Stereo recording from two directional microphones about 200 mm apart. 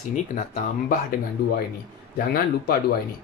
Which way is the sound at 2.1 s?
45° left (ahead or behind).